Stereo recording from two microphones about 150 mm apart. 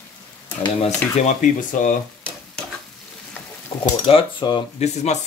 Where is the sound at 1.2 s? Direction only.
60° left (ahead or behind).